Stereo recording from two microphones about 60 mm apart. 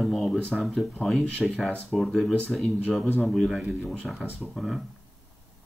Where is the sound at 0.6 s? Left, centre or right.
Centre.